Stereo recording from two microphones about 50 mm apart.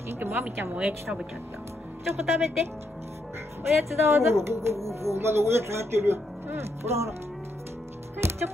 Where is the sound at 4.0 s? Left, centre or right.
Right.